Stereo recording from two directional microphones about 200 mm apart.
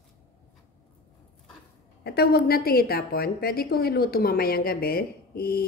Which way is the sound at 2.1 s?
50° left (ahead or behind).